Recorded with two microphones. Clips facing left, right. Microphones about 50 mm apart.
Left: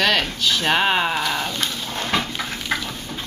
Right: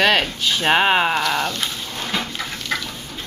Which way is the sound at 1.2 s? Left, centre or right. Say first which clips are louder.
Right 3 dB; centre.